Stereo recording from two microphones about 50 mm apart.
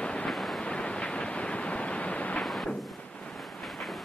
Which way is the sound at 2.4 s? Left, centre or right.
Centre.